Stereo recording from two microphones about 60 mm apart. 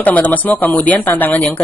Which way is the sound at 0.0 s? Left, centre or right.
Left.